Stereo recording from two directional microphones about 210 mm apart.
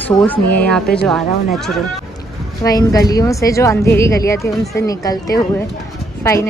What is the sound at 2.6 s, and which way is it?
Speech, 15° left (ahead or behind).